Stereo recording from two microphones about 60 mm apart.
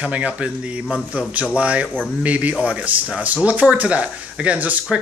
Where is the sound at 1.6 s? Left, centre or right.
Right.